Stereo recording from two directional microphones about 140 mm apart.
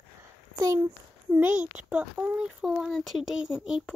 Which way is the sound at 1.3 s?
10° right (ahead or behind).